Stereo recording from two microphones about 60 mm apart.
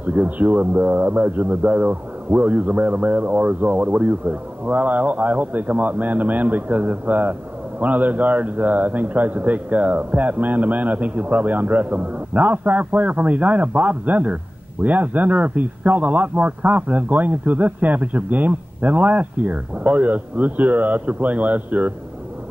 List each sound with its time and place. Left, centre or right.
0.0 s a man's voice: right